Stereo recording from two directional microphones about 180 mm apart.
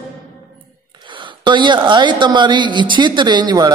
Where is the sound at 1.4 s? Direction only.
25° right (ahead or behind).